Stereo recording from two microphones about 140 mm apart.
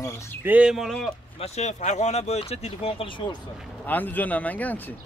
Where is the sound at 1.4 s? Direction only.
55° left (ahead or behind); by 3.2 s 40° left (ahead or behind).